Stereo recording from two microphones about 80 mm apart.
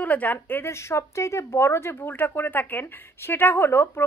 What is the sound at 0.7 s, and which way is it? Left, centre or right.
Speech, left.